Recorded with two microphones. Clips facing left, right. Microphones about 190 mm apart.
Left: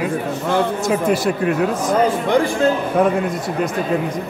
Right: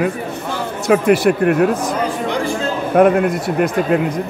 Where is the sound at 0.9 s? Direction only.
60° right (ahead or behind).